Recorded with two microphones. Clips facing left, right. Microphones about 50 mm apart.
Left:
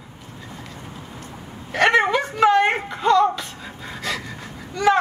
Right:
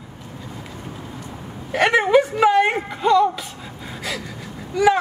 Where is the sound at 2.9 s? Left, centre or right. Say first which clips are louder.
Left 1 dB; centre.